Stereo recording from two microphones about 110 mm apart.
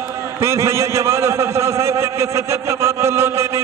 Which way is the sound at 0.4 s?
25° right (ahead or behind).